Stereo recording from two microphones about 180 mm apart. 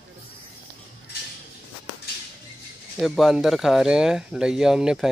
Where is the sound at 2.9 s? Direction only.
Centre (ahead or behind).